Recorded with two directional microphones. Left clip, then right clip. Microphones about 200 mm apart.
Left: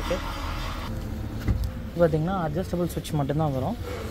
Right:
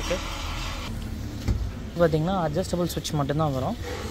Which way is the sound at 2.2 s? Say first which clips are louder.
Right 2 dB; 15° right (ahead or behind).